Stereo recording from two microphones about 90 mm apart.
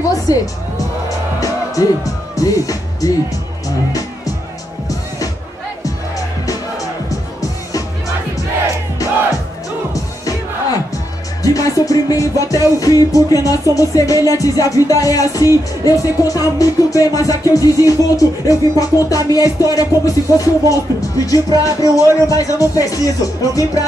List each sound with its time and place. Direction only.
0.1 s music: 40° left (ahead or behind)
5.9 s music: 40° left (ahead or behind)
9.9 s music: 40° left (ahead or behind)